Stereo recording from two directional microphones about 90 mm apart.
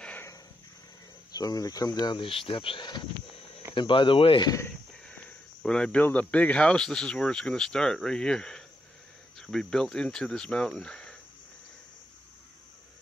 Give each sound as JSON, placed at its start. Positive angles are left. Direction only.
{"t": 1.3, "sound": "speech", "side_deg": 45}
{"t": 2.2, "sound": "speech", "side_deg": 80}
{"t": 5.1, "sound": "speech", "side_deg": 10}